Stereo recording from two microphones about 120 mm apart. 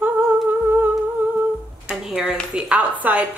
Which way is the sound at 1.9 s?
5° right (ahead or behind).